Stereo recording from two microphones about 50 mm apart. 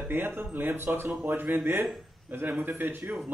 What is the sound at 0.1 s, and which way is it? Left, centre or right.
Speech, right.